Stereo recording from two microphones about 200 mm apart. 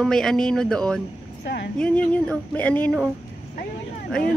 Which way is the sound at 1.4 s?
55° left (ahead or behind).